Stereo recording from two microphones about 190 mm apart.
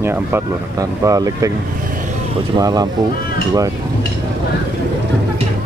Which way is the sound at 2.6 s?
20° right (ahead or behind).